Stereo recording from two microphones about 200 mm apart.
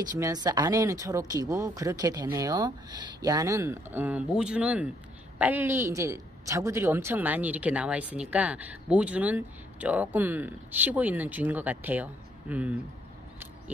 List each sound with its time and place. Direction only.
0.2 s a woman's voice: 20° right (ahead or behind)